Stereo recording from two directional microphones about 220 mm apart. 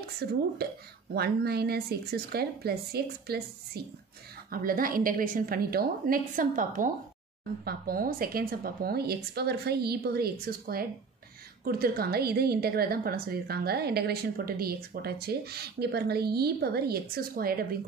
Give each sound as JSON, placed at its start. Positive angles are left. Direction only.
{"t": 0.2, "sound": "a woman's voice", "side_deg": -45}
{"t": 11.6, "sound": "a woman's voice", "side_deg": -45}